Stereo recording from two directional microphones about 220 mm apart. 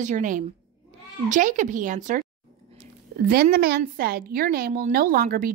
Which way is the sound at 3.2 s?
45° right (ahead or behind).